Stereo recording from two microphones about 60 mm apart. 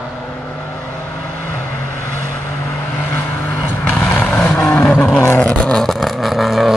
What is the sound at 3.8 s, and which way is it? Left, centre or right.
Vehicle, left.